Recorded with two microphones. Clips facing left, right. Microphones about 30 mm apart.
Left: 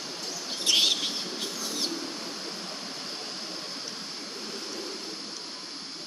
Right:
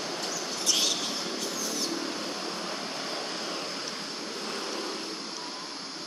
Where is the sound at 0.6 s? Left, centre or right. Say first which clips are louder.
Left 5 dB; left.